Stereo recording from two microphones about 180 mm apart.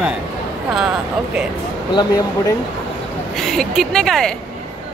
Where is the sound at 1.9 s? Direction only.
20° left (ahead or behind).